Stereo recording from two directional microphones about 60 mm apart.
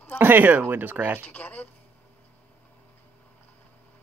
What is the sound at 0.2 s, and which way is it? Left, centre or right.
Speech, right.